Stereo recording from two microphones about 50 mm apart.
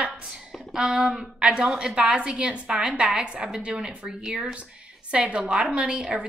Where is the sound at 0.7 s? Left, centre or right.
Centre.